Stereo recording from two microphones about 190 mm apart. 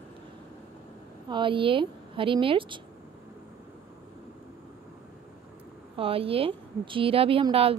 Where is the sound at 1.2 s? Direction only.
25° right (ahead or behind).